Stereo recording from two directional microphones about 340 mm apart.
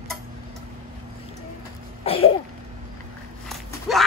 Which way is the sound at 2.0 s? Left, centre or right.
Centre.